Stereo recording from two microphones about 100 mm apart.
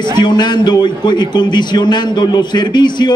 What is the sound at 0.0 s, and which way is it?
A man's voice, 50° left (ahead or behind).